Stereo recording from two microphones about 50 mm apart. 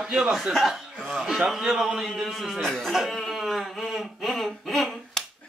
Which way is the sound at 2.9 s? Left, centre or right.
Centre.